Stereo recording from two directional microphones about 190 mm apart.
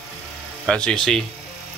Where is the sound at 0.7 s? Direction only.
5° left (ahead or behind).